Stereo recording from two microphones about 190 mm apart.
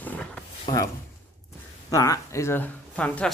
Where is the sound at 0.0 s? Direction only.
5° left (ahead or behind).